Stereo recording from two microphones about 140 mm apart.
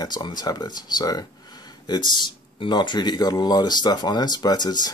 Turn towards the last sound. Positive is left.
turn(degrees=30)  # may be behind; listen again after turning